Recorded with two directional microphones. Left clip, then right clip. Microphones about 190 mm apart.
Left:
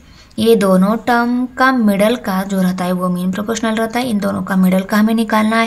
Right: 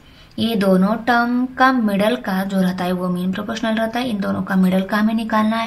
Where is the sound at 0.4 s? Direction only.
30° left (ahead or behind).